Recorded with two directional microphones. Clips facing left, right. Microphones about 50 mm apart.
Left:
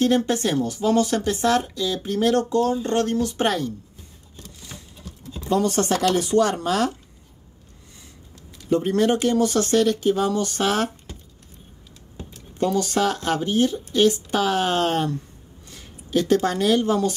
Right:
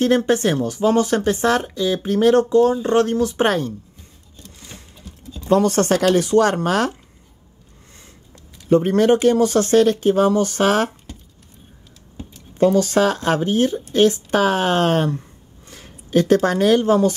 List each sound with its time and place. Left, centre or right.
0.0 s speech: right
2.7 s speech: centre
3.0 s speech: right
5.5 s speech: right
8.6 s speech: right
12.5 s speech: right